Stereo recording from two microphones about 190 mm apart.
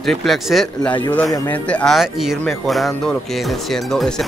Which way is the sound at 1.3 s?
15° left (ahead or behind).